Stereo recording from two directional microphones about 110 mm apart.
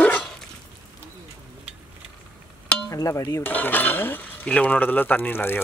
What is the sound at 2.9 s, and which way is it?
Speech, 30° left (ahead or behind).